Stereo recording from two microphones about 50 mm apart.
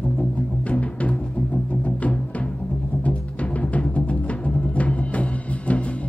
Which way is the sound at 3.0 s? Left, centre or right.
Left.